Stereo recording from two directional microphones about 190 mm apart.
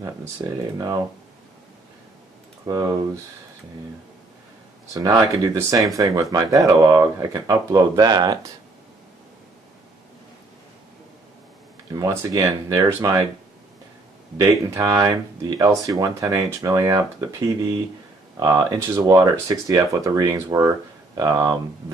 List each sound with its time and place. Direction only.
0.4 s speech: 20° right (ahead or behind)
2.7 s speech: 20° right (ahead or behind)
4.9 s speech: 20° right (ahead or behind)
11.9 s speech: 15° right (ahead or behind)
14.4 s speech: 15° right (ahead or behind)